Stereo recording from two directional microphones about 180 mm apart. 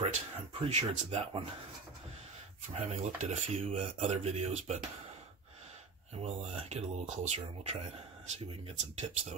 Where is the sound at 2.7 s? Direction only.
35° right (ahead or behind).